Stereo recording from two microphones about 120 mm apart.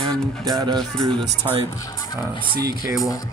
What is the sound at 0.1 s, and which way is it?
Music, 30° right (ahead or behind).